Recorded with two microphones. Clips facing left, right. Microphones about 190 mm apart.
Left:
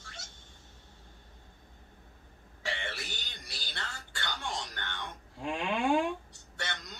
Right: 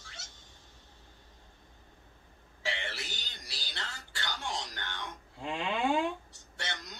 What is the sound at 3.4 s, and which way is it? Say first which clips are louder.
Music: even; 55° left (ahead or behind).